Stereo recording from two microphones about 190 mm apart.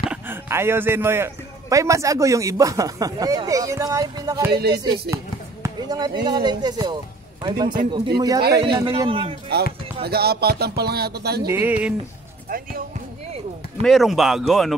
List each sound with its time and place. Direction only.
0.1 s a man's voice: 10° right (ahead or behind)
4.5 s speech: 60° right (ahead or behind)
5.1 s a man's voice: 20° right (ahead or behind)
10.0 s speech: 55° right (ahead or behind)
11.4 s a man's voice: 10° right (ahead or behind)
12.4 s speech: 50° right (ahead or behind)
13.8 s a man's voice: centre (ahead or behind)